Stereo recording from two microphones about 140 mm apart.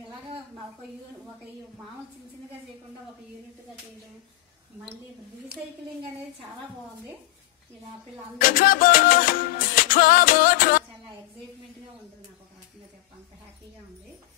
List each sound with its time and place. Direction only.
8.4 s music: 85° left